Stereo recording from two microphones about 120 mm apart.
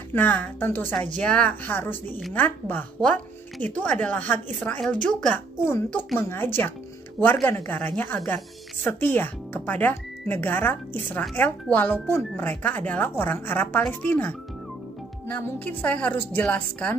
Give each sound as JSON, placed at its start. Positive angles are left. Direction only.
{"t": 0.1, "sound": "a woman's voice", "side_deg": 15}
{"t": 6.1, "sound": "a woman's voice", "side_deg": 20}